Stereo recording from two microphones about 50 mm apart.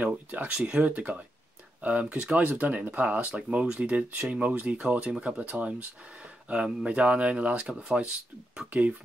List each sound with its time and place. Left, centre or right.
0.0 s speech: right
0.5 s speech: centre
0.8 s speech: right